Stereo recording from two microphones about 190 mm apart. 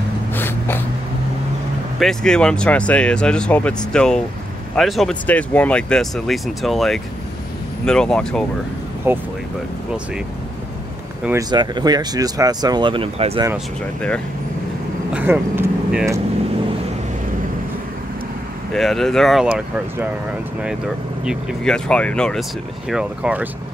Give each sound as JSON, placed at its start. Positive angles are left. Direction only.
{"t": 0.3, "sound": "snort", "side_deg": 10}
{"t": 2.0, "sound": "speech", "side_deg": 5}
{"t": 9.1, "sound": "speech", "side_deg": -10}
{"t": 11.5, "sound": "speech", "side_deg": -20}
{"t": 15.1, "sound": "speech", "side_deg": -10}
{"t": 18.7, "sound": "speech", "side_deg": 0}
{"t": 21.2, "sound": "speech", "side_deg": 0}